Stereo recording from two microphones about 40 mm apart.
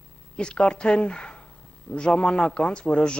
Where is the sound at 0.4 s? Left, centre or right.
Left.